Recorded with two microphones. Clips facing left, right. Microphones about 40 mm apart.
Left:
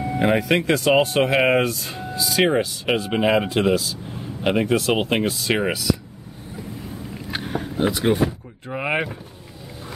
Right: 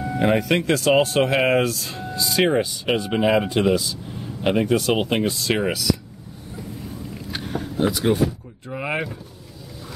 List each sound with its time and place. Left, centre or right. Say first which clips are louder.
0.1 s speech: even; centre
7.3 s vehicle: left 1 dB; centre
8.3 s speech: left 1 dB; left